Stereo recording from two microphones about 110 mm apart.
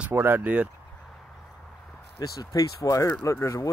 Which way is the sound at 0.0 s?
20° right (ahead or behind).